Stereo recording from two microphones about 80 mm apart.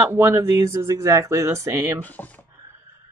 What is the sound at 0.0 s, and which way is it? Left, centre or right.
Speech, right.